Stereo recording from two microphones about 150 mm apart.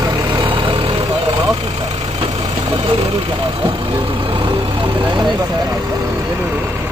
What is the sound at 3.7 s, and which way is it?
Vehicle, 35° right (ahead or behind).